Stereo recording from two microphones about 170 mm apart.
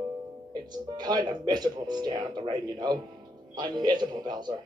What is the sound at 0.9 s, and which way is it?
Speech, 25° right (ahead or behind).